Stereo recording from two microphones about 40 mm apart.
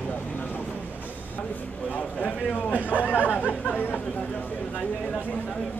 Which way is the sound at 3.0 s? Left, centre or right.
Left.